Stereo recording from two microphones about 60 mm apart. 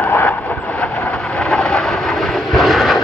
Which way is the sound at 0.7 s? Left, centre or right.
Centre.